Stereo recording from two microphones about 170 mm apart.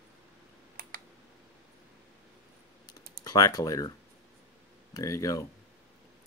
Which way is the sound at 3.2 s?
20° left (ahead or behind).